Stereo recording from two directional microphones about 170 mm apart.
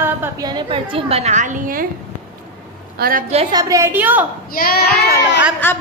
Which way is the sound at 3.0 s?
65° right (ahead or behind).